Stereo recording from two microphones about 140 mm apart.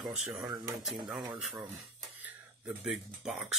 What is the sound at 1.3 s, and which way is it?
Speech, centre (ahead or behind).